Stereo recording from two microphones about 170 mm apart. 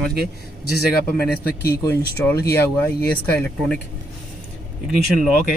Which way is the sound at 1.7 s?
20° left (ahead or behind).